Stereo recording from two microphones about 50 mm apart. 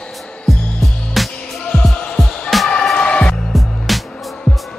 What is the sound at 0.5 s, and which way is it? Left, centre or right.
Music, centre.